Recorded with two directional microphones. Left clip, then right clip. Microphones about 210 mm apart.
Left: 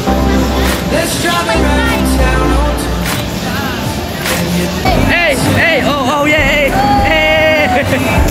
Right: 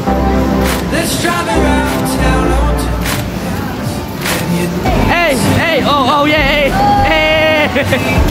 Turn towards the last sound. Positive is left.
turn(degrees=-10)  # may be behind; listen again after turning